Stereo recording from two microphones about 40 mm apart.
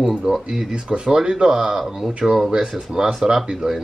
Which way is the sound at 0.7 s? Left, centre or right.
Right.